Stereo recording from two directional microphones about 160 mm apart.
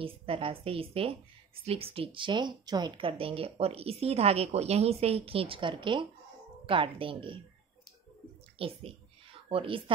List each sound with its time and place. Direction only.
0.0 s a woman's voice: 35° right (ahead or behind)
8.5 s a woman's voice: 35° right (ahead or behind)